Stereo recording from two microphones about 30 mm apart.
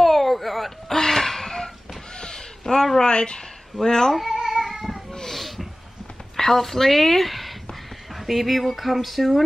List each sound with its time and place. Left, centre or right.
0.0 s babbling: centre
0.9 s a sound: centre
2.1 s a sound: left
2.6 s speech: centre
3.0 s a woman's voice: left
3.8 s speech: centre
4.1 s speech: centre
4.4 s cat: centre
5.3 s a sound: centre
6.3 s a woman's voice: centre